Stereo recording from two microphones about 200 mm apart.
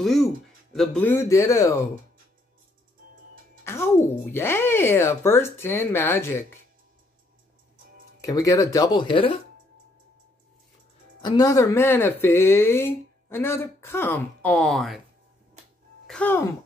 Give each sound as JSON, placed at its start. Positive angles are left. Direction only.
{"t": 0.0, "sound": "speech", "side_deg": 0}
{"t": 3.6, "sound": "speech", "side_deg": 10}
{"t": 8.2, "sound": "speech", "side_deg": 15}
{"t": 11.2, "sound": "speech", "side_deg": 20}
{"t": 16.1, "sound": "speech", "side_deg": 10}